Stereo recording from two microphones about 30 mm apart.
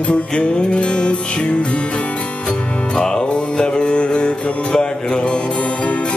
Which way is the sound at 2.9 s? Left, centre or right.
Left.